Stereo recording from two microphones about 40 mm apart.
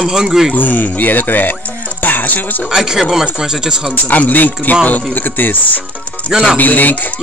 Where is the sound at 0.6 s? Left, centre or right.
Left.